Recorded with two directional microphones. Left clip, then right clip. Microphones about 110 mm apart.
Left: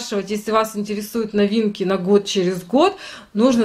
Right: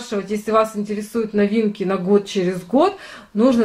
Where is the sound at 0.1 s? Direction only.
40° left (ahead or behind).